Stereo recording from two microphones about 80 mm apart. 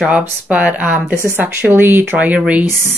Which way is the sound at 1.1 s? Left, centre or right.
Right.